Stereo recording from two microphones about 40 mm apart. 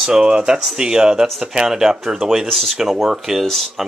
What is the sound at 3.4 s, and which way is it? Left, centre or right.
Speech, centre.